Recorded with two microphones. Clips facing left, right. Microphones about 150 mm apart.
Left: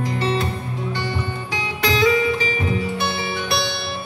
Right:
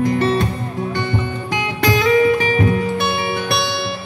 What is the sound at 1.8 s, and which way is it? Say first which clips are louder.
Music: right 4 dB; 50° right (ahead or behind).